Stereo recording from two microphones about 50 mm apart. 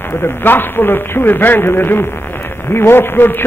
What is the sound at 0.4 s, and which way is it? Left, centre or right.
A man's voice, left.